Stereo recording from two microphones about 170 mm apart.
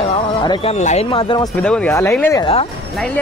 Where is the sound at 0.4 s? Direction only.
30° left (ahead or behind).